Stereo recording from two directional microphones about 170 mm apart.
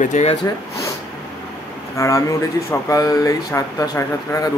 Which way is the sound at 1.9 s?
20° left (ahead or behind).